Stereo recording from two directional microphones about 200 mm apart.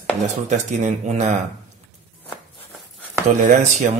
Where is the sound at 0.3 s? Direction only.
35° right (ahead or behind).